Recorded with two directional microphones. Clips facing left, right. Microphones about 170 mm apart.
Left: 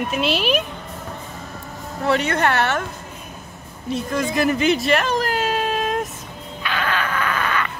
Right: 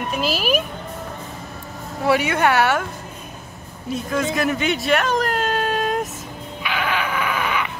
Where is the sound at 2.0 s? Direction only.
10° right (ahead or behind).